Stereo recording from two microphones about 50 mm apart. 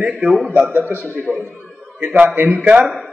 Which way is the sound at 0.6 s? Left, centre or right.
Right.